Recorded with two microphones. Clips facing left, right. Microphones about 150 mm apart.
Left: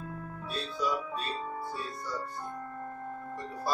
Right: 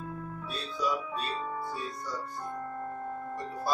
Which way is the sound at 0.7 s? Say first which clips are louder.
Right 1 dB; centre (ahead or behind).